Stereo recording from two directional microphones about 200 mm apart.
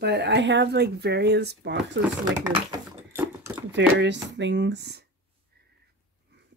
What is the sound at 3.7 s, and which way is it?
Speech, 65° right (ahead or behind).